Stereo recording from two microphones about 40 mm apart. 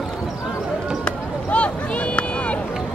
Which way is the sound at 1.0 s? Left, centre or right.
Left.